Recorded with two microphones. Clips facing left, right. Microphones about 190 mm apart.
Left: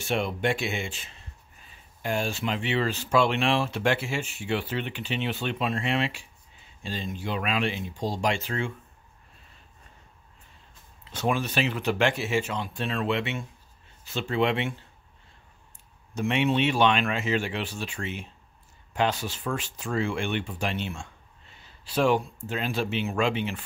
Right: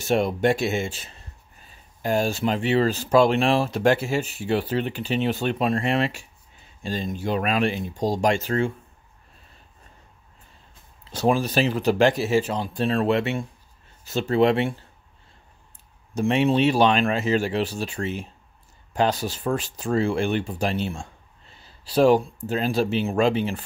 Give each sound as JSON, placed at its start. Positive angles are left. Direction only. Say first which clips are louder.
{"t": 0.0, "sound": "speech", "louder": "right 6 dB", "side_deg": -40}
{"t": 11.1, "sound": "speech", "louder": "right 6 dB", "side_deg": -35}
{"t": 16.2, "sound": "speech", "louder": "right 5 dB", "side_deg": -35}